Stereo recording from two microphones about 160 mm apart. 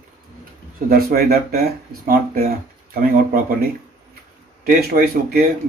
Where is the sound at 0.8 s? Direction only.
70° right (ahead or behind).